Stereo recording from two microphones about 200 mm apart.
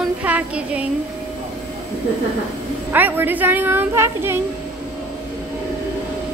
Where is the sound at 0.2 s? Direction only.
5° right (ahead or behind).